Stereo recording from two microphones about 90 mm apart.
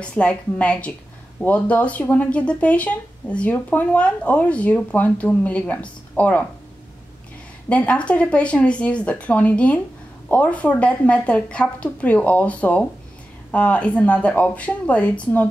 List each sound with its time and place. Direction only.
0.0 s speech: 10° left (ahead or behind)
7.7 s speech: 15° left (ahead or behind)